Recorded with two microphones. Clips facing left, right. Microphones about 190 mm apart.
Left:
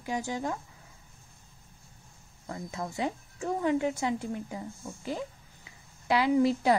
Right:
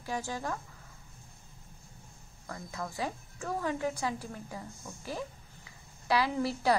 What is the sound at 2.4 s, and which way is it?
Speech, 25° left (ahead or behind).